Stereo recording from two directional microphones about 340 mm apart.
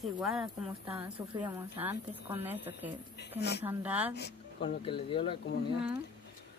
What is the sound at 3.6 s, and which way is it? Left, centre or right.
Speech, centre.